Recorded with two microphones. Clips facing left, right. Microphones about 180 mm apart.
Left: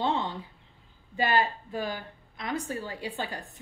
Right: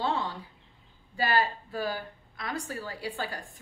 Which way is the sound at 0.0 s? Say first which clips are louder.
Left 2 dB; 20° left (ahead or behind).